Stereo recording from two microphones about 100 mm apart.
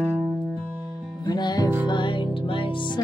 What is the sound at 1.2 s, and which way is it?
Music, 45° left (ahead or behind).